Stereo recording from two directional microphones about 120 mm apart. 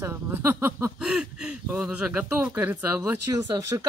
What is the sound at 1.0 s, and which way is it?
Speech, 5° right (ahead or behind).